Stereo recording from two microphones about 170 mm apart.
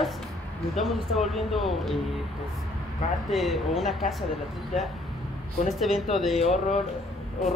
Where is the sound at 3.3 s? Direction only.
Centre (ahead or behind).